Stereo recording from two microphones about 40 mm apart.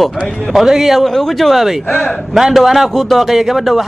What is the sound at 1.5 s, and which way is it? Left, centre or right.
A man's voice, centre.